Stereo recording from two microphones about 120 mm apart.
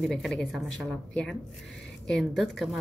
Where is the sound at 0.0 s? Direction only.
5° left (ahead or behind).